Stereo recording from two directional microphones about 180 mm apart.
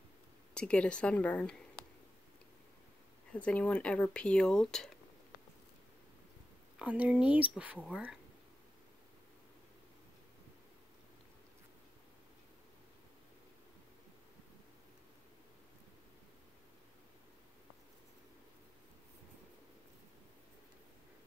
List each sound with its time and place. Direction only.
0.6 s speech: 5° left (ahead or behind)
3.3 s speech: 5° left (ahead or behind)
6.8 s speech: 5° right (ahead or behind)